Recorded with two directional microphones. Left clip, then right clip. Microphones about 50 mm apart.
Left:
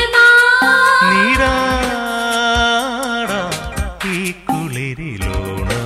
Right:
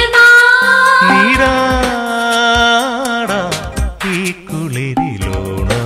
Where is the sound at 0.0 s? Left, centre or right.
Left.